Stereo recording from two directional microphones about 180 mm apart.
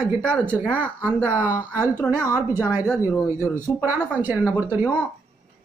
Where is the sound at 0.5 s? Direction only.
10° right (ahead or behind).